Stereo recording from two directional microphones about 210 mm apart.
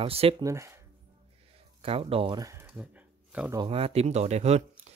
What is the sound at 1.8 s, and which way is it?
Speech, 25° right (ahead or behind).